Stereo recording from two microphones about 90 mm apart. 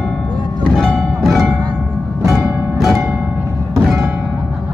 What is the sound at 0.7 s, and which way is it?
Music, 5° left (ahead or behind).